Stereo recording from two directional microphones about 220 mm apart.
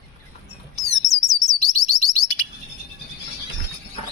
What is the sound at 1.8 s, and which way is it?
Chirp, 15° left (ahead or behind).